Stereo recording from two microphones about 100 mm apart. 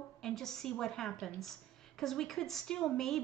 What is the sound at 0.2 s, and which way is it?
A woman's voice, 5° left (ahead or behind).